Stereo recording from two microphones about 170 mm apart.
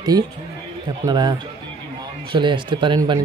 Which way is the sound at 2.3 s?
30° right (ahead or behind).